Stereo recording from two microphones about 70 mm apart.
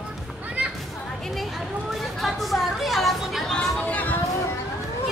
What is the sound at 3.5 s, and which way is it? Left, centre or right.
Vehicle, left.